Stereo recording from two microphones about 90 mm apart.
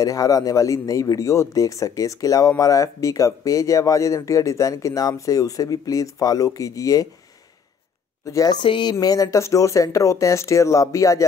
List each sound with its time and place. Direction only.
0.0 s speech: 40° left (ahead or behind)
8.3 s speech: 40° left (ahead or behind)
8.6 s speech: 65° left (ahead or behind)
9.0 s speech: 40° left (ahead or behind)